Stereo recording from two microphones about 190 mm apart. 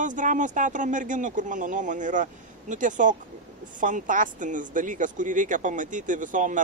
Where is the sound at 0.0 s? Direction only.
40° right (ahead or behind).